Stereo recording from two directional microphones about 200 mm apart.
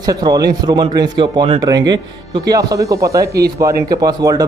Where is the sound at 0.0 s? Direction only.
20° right (ahead or behind).